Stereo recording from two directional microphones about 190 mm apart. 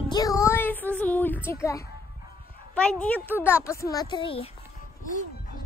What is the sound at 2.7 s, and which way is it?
A woman's voice, 5° left (ahead or behind).